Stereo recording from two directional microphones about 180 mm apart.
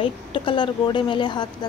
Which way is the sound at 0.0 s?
25° left (ahead or behind).